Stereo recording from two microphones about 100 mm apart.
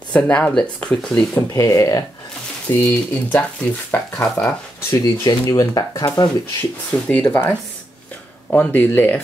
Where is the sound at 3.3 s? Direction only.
20° left (ahead or behind).